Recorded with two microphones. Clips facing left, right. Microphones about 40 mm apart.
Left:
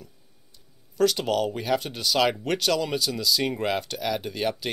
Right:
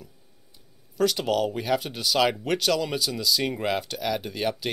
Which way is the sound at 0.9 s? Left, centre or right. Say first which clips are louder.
Left 1 dB; centre.